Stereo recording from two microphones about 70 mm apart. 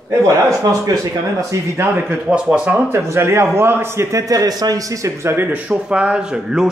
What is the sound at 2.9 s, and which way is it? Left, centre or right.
A man's voice, right.